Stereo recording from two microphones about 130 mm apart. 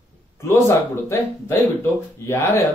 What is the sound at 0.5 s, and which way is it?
Speech, 25° left (ahead or behind).